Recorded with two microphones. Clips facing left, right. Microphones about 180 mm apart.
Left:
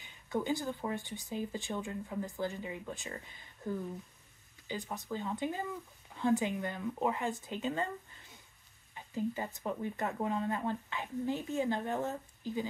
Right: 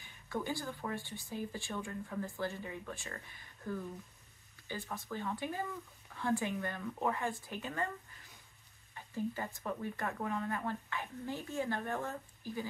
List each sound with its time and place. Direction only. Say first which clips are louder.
0.0 s speech: left 4 dB; 20° left (ahead or behind)
8.9 s speech: left 3 dB; 20° left (ahead or behind)